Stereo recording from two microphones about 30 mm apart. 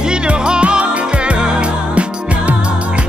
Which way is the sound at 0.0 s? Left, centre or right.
Right.